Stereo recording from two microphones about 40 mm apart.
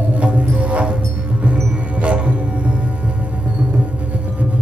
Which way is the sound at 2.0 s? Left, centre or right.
Right.